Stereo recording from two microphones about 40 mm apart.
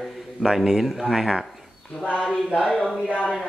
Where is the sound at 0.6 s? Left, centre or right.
Centre.